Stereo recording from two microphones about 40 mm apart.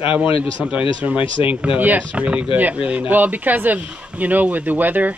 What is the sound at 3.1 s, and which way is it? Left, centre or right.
Speech, right.